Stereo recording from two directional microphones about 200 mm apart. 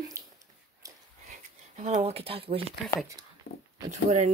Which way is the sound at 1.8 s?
30° right (ahead or behind).